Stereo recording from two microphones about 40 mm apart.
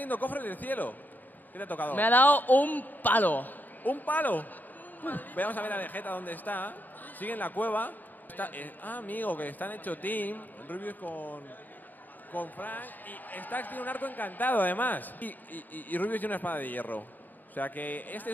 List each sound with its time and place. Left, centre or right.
0.0 s a man's voice: left